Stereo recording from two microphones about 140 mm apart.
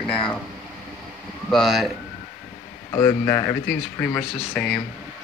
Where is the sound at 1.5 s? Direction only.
Centre (ahead or behind).